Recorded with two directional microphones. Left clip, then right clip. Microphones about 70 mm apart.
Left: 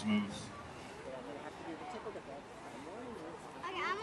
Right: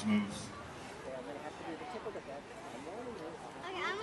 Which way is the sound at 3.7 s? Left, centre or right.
Left.